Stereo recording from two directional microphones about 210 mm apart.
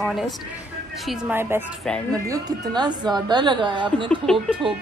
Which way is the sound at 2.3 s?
20° right (ahead or behind).